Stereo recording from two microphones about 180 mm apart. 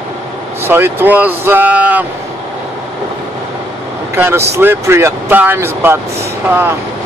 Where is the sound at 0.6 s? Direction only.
10° right (ahead or behind).